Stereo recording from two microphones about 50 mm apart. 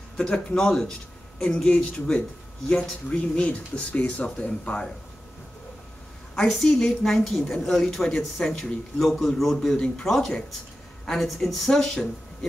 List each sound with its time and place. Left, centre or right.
0.2 s speech: left
6.3 s a woman's voice: centre
11.7 s a woman's voice: centre